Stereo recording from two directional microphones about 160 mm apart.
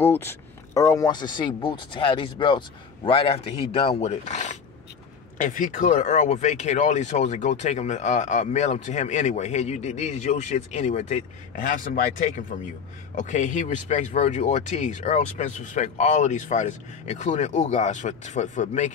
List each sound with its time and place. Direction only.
0.0 s speech: 15° left (ahead or behind); by 18.9 s 50° left (ahead or behind)